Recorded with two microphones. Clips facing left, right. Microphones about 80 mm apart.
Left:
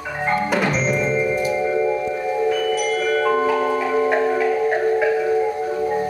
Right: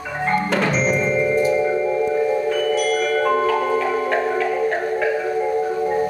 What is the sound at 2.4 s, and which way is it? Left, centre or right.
Marimba, centre.